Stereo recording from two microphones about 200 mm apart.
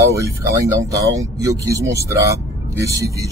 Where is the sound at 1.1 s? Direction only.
15° right (ahead or behind).